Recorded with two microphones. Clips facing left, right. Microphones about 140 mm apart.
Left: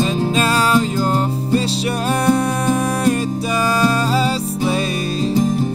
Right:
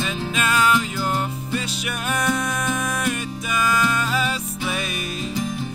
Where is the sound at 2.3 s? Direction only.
35° left (ahead or behind).